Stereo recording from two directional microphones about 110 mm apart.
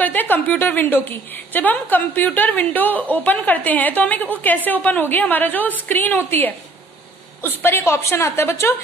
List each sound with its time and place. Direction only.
0.0 s a woman's voice: 15° left (ahead or behind)